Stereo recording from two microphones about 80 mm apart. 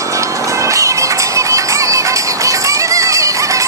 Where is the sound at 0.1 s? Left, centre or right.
Right.